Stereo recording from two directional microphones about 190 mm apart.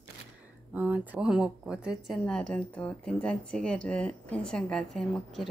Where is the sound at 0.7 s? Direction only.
10° right (ahead or behind).